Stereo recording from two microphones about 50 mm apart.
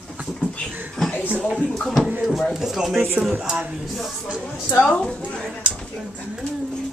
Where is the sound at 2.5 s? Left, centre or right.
Centre.